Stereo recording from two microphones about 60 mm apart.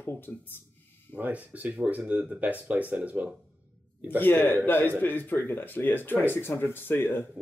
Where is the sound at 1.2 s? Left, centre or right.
Right.